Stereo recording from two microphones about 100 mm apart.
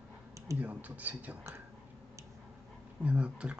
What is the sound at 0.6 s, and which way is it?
Speech, 15° right (ahead or behind).